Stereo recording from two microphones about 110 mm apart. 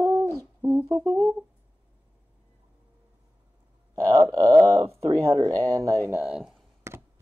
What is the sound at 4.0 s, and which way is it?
Speech, 30° right (ahead or behind).